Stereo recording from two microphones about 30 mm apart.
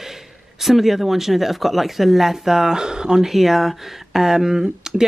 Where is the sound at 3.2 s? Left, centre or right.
Centre.